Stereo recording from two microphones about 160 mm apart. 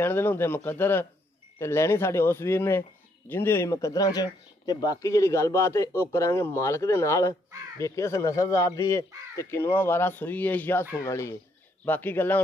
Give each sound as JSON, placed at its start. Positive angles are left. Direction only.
{"t": 0.0, "sound": "speech", "side_deg": 15}